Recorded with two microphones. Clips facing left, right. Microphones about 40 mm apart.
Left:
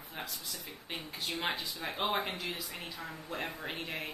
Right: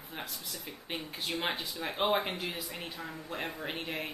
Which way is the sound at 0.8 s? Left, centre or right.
Centre.